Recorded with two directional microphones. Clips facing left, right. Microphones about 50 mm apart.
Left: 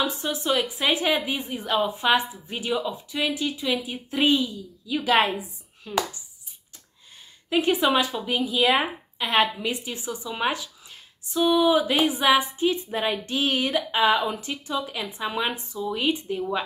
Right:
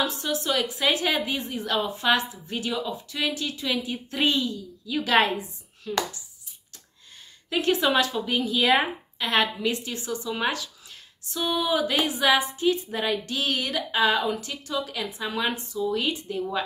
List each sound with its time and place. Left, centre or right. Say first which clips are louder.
0.0 s speech: even; left
7.4 s speech: left 2 dB; centre